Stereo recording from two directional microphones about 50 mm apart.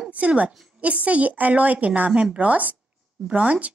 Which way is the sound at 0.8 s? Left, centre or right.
Right.